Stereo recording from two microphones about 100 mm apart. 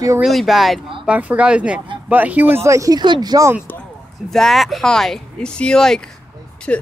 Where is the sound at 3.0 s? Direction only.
45° right (ahead or behind).